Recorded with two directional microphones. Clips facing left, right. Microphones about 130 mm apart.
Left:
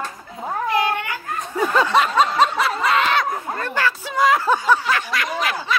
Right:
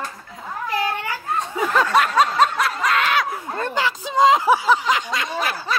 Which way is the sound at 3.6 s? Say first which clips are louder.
Right 2 dB; 15° right (ahead or behind).